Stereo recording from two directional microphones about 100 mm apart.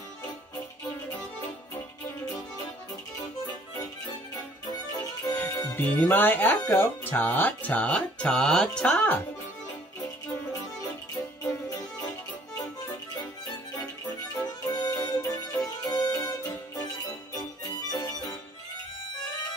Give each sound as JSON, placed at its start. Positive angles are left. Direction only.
{"t": 4.6, "sound": "music", "side_deg": 45}
{"t": 5.8, "sound": "music", "side_deg": 15}
{"t": 6.7, "sound": "speech", "side_deg": 20}
{"t": 14.4, "sound": "music", "side_deg": 45}
{"t": 17.4, "sound": "harmonica", "side_deg": 40}